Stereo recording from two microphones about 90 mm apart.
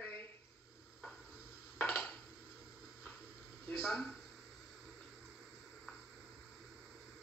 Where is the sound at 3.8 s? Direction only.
Centre (ahead or behind).